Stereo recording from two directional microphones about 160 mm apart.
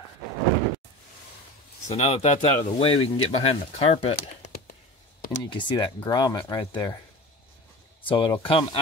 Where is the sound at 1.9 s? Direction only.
40° left (ahead or behind).